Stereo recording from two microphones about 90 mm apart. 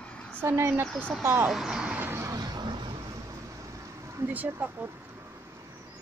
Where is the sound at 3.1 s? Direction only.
40° right (ahead or behind).